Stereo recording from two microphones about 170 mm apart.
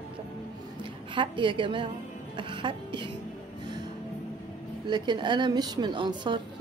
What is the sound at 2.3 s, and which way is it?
Music, 30° right (ahead or behind).